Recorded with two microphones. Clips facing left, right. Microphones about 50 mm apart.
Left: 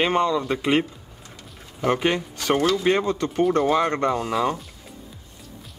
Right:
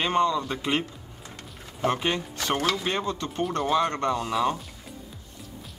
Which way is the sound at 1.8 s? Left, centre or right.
Left.